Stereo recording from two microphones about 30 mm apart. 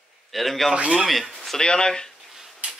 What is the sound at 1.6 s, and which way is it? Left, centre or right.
Speech, left.